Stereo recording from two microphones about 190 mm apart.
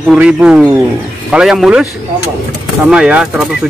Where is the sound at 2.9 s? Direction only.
5° right (ahead or behind).